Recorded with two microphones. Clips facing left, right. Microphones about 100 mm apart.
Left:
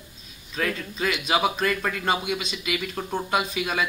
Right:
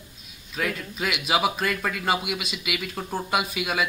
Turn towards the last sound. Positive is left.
turn(degrees=-5)  # may be behind; listen again after turning